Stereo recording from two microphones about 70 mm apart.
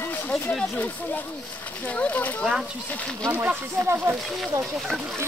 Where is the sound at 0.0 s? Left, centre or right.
Left.